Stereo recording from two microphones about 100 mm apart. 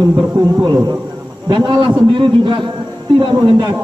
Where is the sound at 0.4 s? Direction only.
35° right (ahead or behind).